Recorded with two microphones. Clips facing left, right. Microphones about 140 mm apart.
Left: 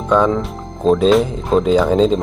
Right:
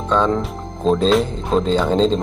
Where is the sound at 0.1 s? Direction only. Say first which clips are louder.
Left 3 dB; 5° left (ahead or behind).